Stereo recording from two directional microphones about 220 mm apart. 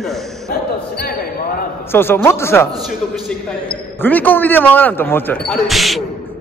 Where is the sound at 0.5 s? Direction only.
45° left (ahead or behind).